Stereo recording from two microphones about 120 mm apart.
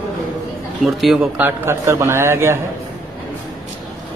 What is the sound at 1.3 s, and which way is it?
A man's voice, 20° right (ahead or behind).